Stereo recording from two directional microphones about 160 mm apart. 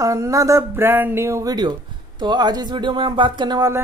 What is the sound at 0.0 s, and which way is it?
Speech, 20° right (ahead or behind).